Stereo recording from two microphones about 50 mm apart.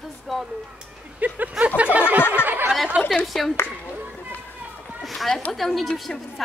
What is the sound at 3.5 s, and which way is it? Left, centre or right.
Speech, left.